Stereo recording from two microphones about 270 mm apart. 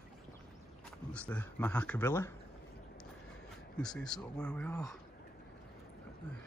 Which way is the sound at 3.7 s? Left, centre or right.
Centre.